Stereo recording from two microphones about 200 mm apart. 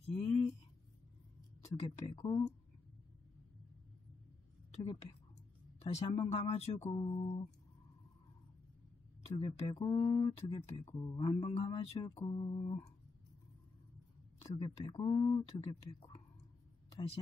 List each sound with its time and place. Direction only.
0.0 s a sound: 35° left (ahead or behind)
1.6 s speech: 30° left (ahead or behind)
4.7 s a woman's voice: 30° left (ahead or behind)
9.6 s speech: 25° left (ahead or behind)
14.4 s speech: 25° left (ahead or behind)